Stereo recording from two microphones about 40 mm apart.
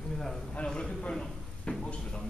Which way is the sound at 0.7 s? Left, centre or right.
Left.